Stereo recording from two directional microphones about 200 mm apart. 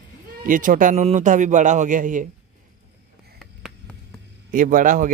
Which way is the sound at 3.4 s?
Centre (ahead or behind).